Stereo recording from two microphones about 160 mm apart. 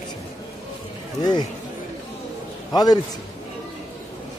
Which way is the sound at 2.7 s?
25° left (ahead or behind).